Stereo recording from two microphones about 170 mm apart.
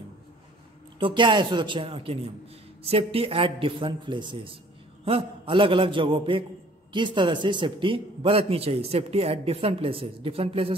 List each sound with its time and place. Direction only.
0.9 s a man's voice: 30° right (ahead or behind)